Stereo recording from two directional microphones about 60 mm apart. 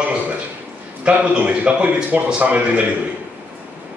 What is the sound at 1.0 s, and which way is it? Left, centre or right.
A man's voice, right.